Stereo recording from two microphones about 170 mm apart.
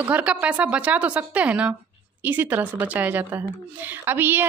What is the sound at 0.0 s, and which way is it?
A woman's voice, 10° right (ahead or behind).